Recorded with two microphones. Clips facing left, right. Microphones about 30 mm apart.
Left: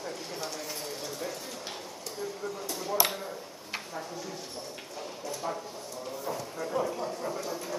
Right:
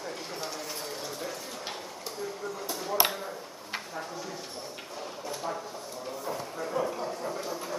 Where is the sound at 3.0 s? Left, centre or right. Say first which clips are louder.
Right 2 dB; right.